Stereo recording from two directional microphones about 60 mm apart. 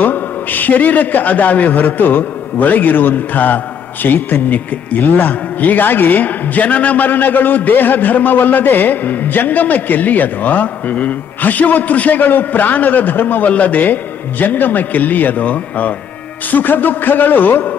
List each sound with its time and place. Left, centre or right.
0.0 s a man's voice: left